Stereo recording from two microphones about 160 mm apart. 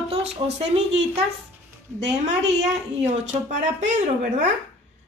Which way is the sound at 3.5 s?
50° right (ahead or behind).